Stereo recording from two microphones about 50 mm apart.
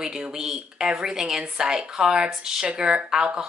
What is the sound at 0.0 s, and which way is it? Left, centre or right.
Speech, centre.